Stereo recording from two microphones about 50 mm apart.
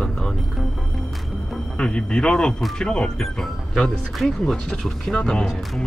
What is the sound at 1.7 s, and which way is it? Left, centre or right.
Speech, centre.